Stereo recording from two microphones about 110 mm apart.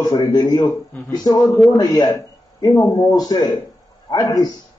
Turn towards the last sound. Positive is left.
turn(degrees=35)  # may be behind; listen again after turning